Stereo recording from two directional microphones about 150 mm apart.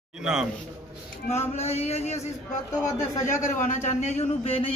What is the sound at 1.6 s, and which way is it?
Speech, 45° left (ahead or behind).